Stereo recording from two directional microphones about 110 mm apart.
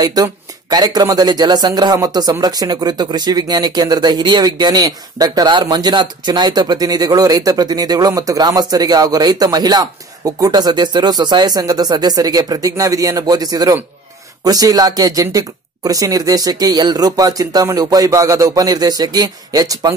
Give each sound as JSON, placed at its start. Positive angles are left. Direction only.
{"t": 0.0, "sound": "speech", "side_deg": -35}